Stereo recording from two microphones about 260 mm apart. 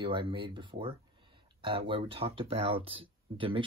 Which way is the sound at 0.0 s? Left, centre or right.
Centre.